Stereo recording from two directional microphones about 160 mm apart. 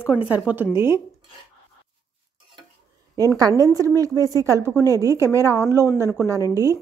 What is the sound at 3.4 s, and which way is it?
A woman's voice, 20° right (ahead or behind).